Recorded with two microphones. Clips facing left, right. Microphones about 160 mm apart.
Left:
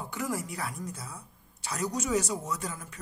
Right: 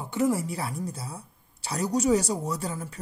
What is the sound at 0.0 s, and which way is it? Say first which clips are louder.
Speech: right 8 dB; 25° right (ahead or behind).